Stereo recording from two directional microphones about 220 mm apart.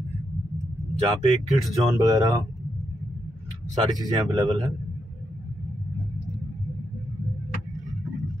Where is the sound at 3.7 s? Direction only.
20° right (ahead or behind).